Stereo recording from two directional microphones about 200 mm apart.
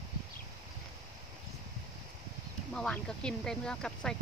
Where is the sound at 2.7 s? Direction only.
5° left (ahead or behind).